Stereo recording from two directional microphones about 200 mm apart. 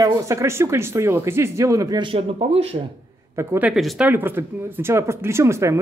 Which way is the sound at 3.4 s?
10° right (ahead or behind).